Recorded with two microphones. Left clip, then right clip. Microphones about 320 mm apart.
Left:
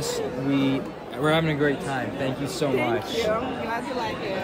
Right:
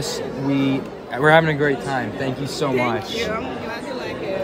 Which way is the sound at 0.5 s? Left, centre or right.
Centre.